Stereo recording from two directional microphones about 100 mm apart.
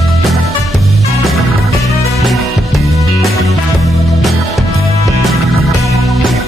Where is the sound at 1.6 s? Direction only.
30° left (ahead or behind).